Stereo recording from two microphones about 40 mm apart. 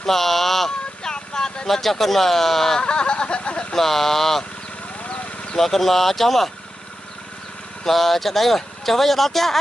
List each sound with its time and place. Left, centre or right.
0.0 s a sound: centre
0.7 s a sound: centre
2.8 s speech: left
3.7 s speech: centre
5.0 s vehicle: left
5.6 s speech: centre
7.8 s speech: centre